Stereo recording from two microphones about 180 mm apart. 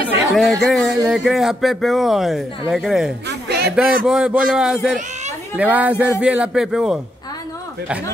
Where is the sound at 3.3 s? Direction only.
65° right (ahead or behind).